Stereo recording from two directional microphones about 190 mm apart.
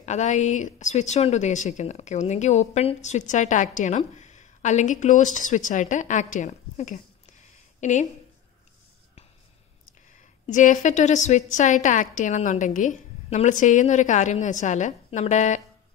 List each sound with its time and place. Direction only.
0.0 s a woman's voice: 35° left (ahead or behind)
10.4 s a woman's voice: 40° left (ahead or behind)